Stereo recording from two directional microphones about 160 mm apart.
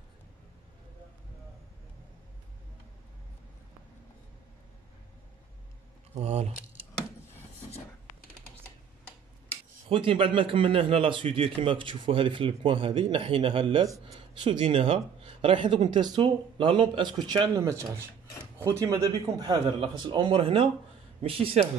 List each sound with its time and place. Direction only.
6.1 s a man's voice: 40° right (ahead or behind)
9.8 s a man's voice: 35° right (ahead or behind)
19.4 s a man's voice: 30° right (ahead or behind)